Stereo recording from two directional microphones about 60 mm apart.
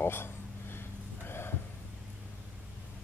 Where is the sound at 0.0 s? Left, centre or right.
Left.